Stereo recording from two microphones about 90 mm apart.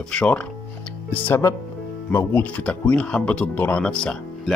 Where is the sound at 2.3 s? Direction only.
15° left (ahead or behind).